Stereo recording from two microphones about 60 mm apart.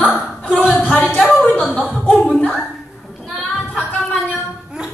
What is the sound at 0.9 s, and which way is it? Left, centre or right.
Speech, left.